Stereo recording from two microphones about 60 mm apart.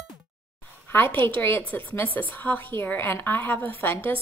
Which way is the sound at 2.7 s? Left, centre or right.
Left.